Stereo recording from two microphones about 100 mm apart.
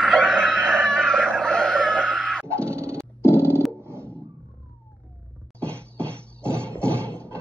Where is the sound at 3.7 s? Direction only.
25° right (ahead or behind).